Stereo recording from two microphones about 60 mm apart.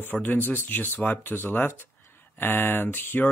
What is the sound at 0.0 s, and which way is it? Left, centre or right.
Speech, left.